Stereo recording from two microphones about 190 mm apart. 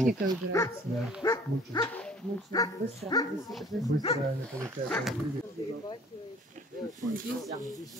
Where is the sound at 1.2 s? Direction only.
20° left (ahead or behind).